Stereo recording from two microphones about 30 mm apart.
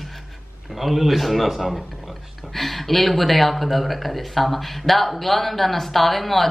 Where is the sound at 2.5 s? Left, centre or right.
Centre.